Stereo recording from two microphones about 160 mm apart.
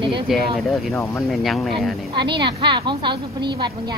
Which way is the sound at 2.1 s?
30° right (ahead or behind).